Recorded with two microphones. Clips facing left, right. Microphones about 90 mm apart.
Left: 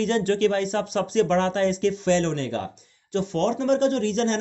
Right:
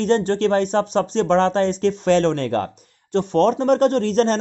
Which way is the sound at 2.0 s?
50° right (ahead or behind).